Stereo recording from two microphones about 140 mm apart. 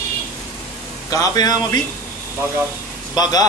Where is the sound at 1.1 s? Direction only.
25° left (ahead or behind).